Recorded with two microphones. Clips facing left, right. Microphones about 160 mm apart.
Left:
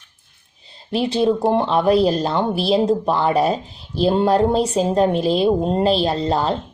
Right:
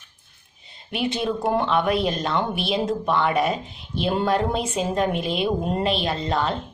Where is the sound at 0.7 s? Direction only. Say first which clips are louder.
Left 5 dB; 30° left (ahead or behind).